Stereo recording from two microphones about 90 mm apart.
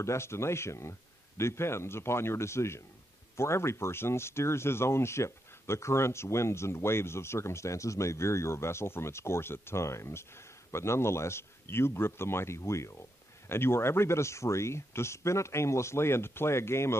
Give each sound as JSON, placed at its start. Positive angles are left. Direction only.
{"t": 0.0, "sound": "speech", "side_deg": 30}